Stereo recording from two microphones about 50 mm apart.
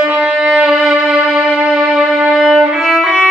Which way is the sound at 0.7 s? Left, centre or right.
Centre.